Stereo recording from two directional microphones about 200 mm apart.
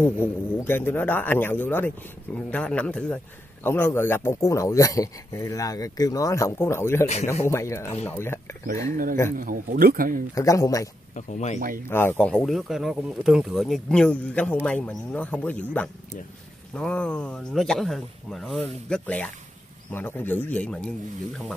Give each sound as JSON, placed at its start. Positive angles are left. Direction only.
{"t": 0.0, "sound": "a man's voice", "side_deg": 10}
{"t": 9.4, "sound": "speech", "side_deg": -45}
{"t": 10.3, "sound": "a man's voice", "side_deg": 15}
{"t": 11.1, "sound": "speech", "side_deg": 35}
{"t": 11.9, "sound": "a man's voice", "side_deg": 10}